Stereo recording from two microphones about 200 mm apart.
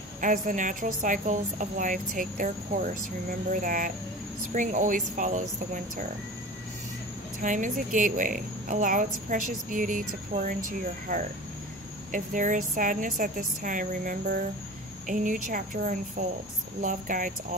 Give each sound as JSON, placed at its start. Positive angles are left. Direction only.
{"t": 0.2, "sound": "a woman's voice", "side_deg": -40}
{"t": 7.4, "sound": "a woman's voice", "side_deg": -40}
{"t": 12.1, "sound": "a woman's voice", "side_deg": -40}